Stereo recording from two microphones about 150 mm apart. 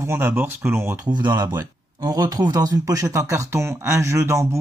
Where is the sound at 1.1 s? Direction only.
30° right (ahead or behind).